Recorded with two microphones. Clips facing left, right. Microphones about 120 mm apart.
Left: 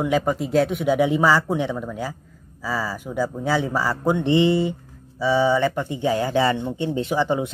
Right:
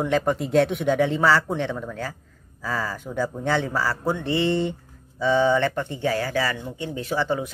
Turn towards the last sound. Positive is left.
turn(degrees=20)  # may be behind; listen again after turning